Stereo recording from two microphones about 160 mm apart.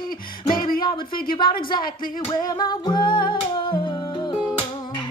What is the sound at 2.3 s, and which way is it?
Music, 25° left (ahead or behind).